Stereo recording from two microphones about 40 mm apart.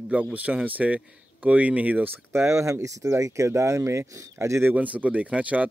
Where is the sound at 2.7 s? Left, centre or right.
Right.